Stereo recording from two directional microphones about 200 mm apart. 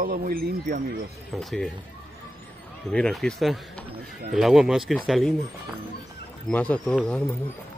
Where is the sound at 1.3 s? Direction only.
Centre (ahead or behind).